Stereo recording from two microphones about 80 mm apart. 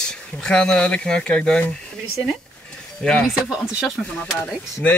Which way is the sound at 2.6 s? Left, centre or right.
Centre.